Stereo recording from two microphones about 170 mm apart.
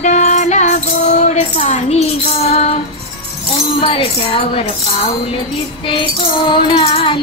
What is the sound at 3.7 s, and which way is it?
Music, 35° left (ahead or behind).